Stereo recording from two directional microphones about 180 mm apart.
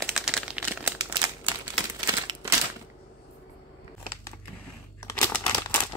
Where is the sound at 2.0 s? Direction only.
15° right (ahead or behind).